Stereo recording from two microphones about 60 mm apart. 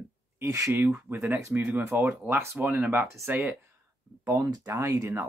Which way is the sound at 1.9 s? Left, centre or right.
Right.